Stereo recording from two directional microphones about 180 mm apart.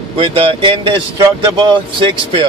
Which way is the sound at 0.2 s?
30° right (ahead or behind).